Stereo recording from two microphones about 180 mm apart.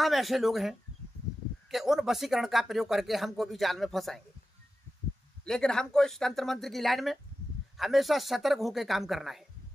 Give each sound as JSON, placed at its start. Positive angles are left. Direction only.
{"t": 0.0, "sound": "speech", "side_deg": 0}
{"t": 5.4, "sound": "speech", "side_deg": 5}